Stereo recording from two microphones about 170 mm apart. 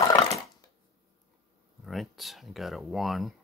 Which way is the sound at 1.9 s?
Centre (ahead or behind).